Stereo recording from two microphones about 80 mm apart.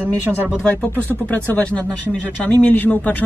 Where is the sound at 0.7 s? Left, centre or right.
Left.